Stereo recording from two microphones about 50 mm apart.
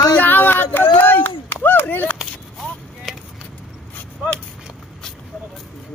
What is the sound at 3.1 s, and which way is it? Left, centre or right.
Vehicle, centre.